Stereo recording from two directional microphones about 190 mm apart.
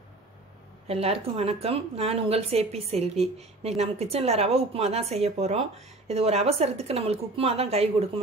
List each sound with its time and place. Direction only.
0.8 s speech: 30° right (ahead or behind)